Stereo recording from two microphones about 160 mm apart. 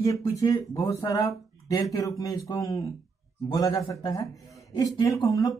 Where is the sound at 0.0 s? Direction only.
20° left (ahead or behind).